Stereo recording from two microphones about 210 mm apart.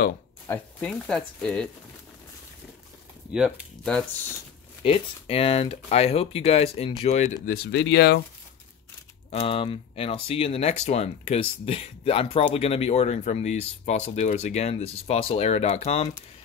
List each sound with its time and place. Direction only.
0.5 s speech: 5° left (ahead or behind)
3.3 s speech: centre (ahead or behind)
4.8 s speech: 25° left (ahead or behind)
7.4 s speech: 50° left (ahead or behind)
9.3 s speech: 25° left (ahead or behind)